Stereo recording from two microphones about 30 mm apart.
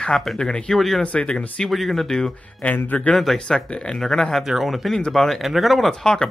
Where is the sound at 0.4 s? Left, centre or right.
Left.